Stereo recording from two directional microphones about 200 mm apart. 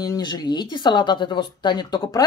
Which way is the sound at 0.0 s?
20° left (ahead or behind).